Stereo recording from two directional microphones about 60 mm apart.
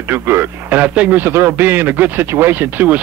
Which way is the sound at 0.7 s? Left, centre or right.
Right.